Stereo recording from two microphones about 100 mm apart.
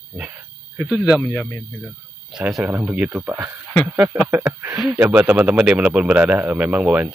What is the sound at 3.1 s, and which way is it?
A man's voice, 25° right (ahead or behind).